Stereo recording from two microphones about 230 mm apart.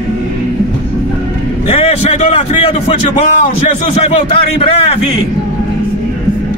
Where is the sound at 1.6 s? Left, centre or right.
Left.